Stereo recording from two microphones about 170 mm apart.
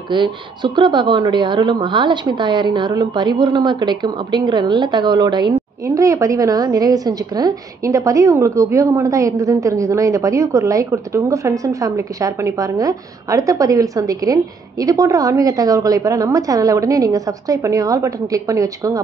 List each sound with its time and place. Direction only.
0.1 s a woman's voice: 25° right (ahead or behind)